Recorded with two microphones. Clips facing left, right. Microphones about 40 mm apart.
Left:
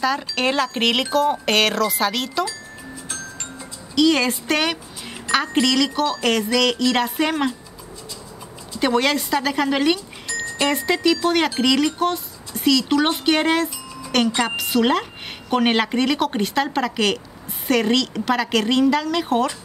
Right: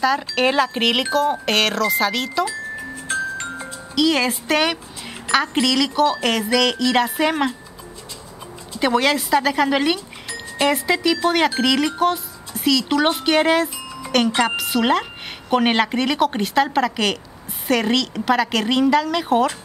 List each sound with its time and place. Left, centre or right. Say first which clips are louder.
0.0 s speech: right 3 dB; centre
3.1 s music: right 12 dB; right
3.9 s speech: left 1 dB; centre
8.8 s speech: right 1 dB; centre